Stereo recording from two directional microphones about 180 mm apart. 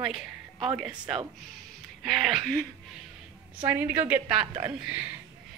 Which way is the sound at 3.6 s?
10° right (ahead or behind).